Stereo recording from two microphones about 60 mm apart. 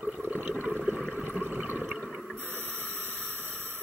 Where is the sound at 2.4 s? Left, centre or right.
Right.